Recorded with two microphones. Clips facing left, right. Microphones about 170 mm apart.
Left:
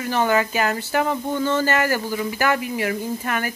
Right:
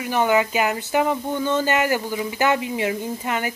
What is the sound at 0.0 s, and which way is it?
Speech, 15° right (ahead or behind).